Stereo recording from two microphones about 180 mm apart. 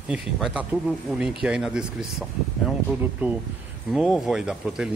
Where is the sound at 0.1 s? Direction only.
5° right (ahead or behind).